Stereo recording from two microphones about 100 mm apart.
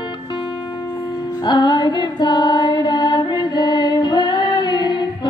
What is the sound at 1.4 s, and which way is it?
Music, 45° left (ahead or behind).